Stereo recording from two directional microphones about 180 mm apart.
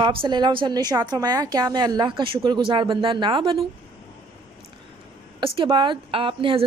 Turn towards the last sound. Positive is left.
turn(degrees=-30)  # may be behind; listen again after turning